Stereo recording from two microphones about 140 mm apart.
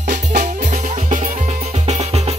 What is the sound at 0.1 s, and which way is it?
Music, 60° right (ahead or behind).